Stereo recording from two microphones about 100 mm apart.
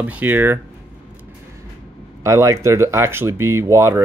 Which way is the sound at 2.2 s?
30° right (ahead or behind).